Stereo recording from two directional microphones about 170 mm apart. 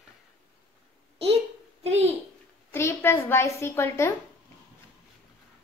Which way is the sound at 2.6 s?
15° left (ahead or behind).